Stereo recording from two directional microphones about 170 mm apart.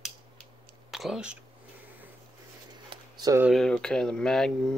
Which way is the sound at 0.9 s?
Centre (ahead or behind).